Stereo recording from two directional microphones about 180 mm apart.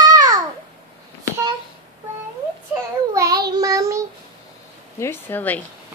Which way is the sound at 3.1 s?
20° right (ahead or behind).